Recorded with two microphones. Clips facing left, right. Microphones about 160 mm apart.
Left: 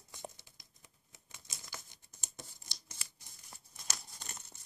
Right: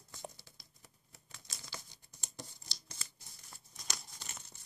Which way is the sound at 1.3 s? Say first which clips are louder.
Even; 20° left (ahead or behind).